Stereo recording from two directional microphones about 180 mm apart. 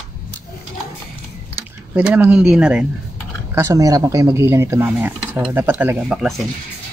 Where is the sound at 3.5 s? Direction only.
15° right (ahead or behind); by 6.4 s centre (ahead or behind).